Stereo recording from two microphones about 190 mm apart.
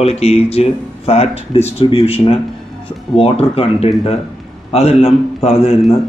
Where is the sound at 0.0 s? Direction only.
35° left (ahead or behind).